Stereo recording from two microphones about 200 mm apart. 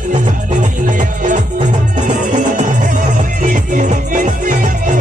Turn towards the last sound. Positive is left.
turn(degrees=-40)  # may be behind; listen again after turning